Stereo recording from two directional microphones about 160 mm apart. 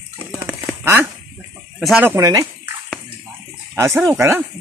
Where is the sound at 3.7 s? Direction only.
15° right (ahead or behind).